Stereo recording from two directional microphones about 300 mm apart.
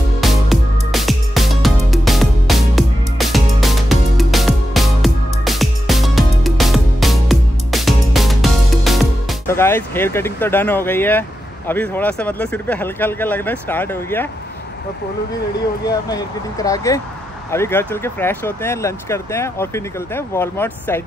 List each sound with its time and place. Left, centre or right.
0.2 s music: centre
9.5 s speech: centre
15.9 s speech: centre